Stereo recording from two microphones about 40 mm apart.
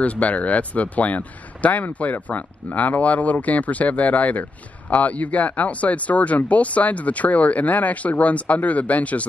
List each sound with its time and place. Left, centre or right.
0.0 s speech: left